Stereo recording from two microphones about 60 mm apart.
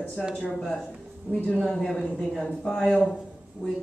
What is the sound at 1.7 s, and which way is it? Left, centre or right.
Speech, centre.